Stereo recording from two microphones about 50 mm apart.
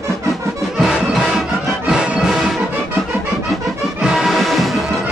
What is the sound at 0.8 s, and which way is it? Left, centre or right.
Music, centre.